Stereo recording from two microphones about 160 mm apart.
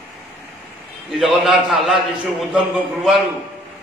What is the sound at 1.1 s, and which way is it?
A man's voice, centre (ahead or behind).